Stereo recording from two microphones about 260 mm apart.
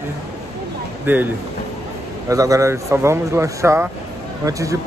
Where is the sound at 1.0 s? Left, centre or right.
Centre.